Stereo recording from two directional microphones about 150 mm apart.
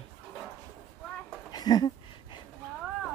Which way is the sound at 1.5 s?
25° left (ahead or behind).